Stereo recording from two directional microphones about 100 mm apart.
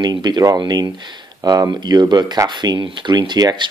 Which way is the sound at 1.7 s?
50° right (ahead or behind).